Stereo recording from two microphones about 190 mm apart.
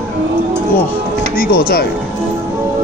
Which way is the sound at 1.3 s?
50° left (ahead or behind).